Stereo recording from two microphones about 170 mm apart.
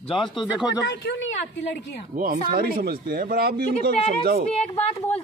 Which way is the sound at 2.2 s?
60° right (ahead or behind).